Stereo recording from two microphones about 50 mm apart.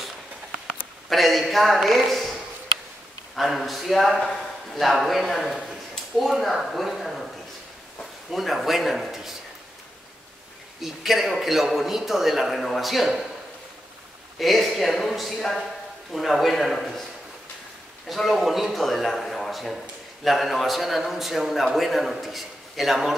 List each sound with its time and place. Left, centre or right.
1.0 s a man's voice: centre
3.3 s a man's voice: centre
8.0 s a sound: centre
10.8 s a man's voice: centre
14.4 s a man's voice: centre
18.0 s a man's voice: centre